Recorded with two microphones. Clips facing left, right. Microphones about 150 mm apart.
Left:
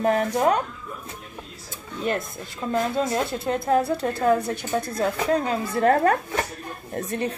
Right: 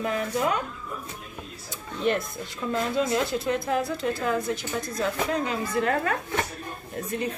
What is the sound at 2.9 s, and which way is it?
Speech, 45° left (ahead or behind).